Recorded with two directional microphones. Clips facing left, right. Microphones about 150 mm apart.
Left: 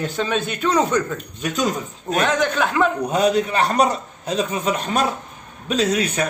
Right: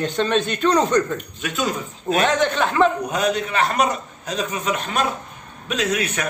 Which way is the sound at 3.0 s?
30° left (ahead or behind).